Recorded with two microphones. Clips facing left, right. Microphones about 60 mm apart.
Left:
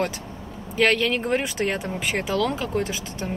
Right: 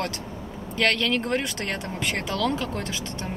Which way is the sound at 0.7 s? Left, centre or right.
Centre.